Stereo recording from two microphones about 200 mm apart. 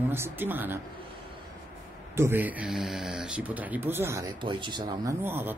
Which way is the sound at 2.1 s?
10° right (ahead or behind).